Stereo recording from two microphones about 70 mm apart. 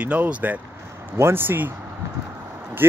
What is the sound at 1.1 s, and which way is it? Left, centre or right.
Speech, right.